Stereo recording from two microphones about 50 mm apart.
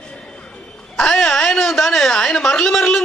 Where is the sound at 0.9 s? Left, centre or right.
Centre.